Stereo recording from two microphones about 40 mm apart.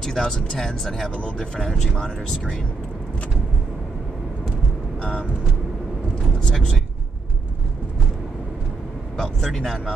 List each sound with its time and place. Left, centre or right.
0.0 s speech: centre
6.4 s speech: centre
9.4 s speech: centre